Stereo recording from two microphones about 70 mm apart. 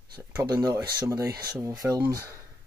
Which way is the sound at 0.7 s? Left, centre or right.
Right.